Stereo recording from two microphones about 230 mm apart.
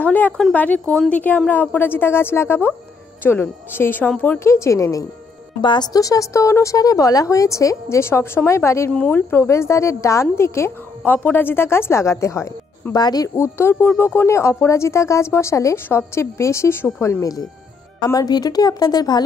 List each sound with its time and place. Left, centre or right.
0.0 s speech: centre